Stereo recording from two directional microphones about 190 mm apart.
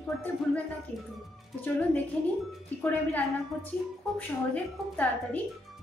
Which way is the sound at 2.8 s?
10° left (ahead or behind).